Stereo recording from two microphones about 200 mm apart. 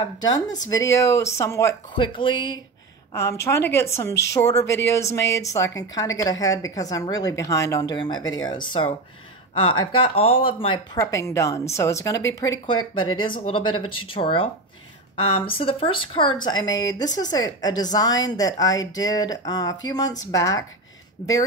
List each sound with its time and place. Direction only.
0.2 s speech: 20° left (ahead or behind)